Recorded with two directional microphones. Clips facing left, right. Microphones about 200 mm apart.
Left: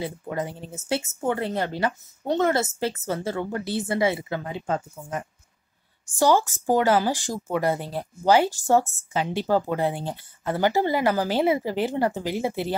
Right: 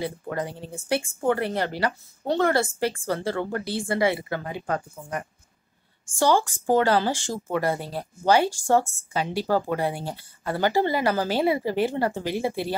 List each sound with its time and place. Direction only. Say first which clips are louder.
0.0 s speech: even; 20° left (ahead or behind)
6.1 s speech: left 1 dB; 20° left (ahead or behind)